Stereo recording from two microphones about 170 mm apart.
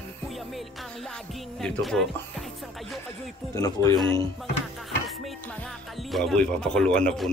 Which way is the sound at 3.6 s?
20° left (ahead or behind).